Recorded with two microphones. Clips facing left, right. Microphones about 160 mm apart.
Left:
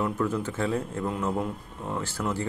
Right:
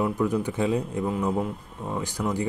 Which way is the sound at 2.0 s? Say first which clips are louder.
Right 3 dB; 15° right (ahead or behind).